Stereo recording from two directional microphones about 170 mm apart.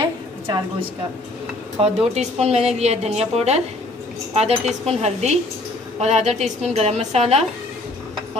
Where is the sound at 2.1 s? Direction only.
40° right (ahead or behind).